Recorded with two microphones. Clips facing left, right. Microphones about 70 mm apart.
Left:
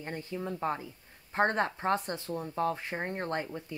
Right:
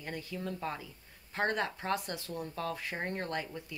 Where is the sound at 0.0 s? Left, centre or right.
Left.